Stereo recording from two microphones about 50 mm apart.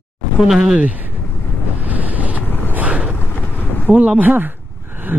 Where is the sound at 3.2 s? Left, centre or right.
Left.